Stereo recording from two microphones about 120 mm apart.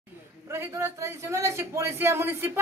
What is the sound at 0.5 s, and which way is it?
A man's voice, 20° right (ahead or behind).